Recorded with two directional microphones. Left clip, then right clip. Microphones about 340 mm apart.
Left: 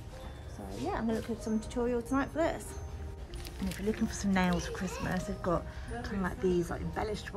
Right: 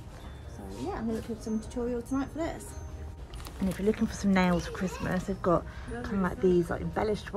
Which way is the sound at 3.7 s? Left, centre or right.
Centre.